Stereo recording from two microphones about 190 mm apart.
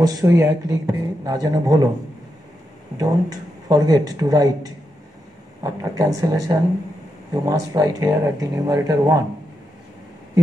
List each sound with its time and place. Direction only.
0.0 s speech: 20° right (ahead or behind)
3.0 s speech: 20° right (ahead or behind)
10.4 s a sound: 20° right (ahead or behind)